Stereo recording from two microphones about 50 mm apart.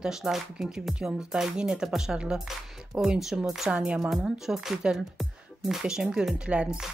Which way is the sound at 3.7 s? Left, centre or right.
Right.